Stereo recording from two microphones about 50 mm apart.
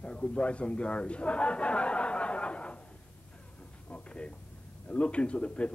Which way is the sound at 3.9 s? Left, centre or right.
Left.